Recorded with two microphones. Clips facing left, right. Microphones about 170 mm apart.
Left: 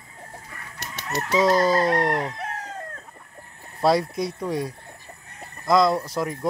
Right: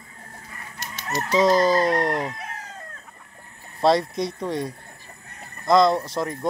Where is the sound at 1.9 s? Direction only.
20° right (ahead or behind).